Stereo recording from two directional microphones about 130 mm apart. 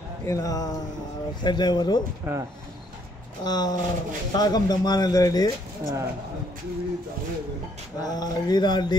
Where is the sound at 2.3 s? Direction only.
15° right (ahead or behind).